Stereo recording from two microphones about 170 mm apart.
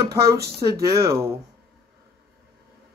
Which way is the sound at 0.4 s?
65° right (ahead or behind).